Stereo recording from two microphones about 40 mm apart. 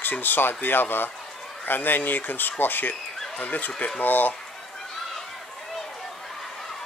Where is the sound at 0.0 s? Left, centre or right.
Left.